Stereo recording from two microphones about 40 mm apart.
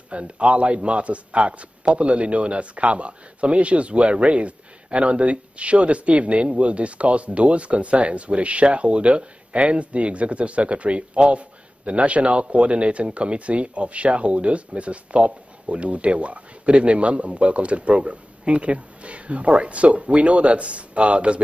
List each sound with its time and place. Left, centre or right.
0.1 s a man's voice: right